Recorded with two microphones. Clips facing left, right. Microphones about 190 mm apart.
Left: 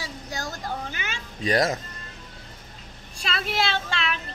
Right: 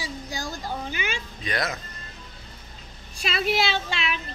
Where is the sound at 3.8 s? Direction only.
10° right (ahead or behind).